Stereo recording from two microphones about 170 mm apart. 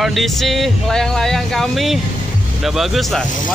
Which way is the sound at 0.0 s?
Centre (ahead or behind).